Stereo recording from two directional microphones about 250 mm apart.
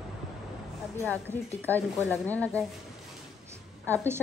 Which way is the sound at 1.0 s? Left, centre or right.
Centre.